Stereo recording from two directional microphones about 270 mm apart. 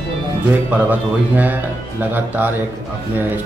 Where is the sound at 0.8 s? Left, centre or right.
Centre.